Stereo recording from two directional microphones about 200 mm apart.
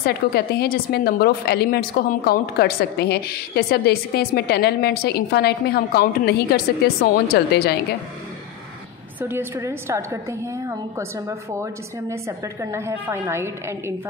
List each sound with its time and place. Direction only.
0.0 s a woman's voice: 50° left (ahead or behind)
9.2 s a woman's voice: 10° right (ahead or behind)